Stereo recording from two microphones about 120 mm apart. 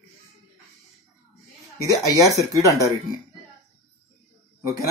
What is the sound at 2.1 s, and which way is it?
Speech, 30° right (ahead or behind).